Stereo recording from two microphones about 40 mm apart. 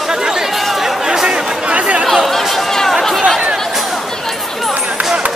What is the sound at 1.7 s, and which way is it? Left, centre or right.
Chatter, right.